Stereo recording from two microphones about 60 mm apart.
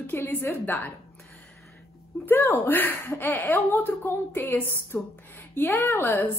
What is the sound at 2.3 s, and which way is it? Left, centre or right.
Speech, left.